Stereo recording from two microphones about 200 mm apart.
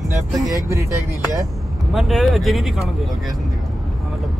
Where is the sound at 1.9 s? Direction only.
Centre (ahead or behind).